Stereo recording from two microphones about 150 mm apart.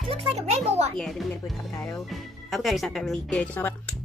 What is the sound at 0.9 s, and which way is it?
Speech, 5° left (ahead or behind).